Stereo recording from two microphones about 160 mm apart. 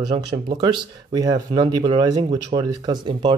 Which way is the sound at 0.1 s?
35° right (ahead or behind).